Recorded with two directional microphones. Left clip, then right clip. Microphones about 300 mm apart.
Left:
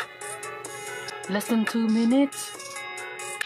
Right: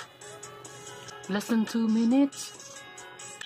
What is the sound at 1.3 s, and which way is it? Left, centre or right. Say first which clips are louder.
Speech: left 3 dB; centre.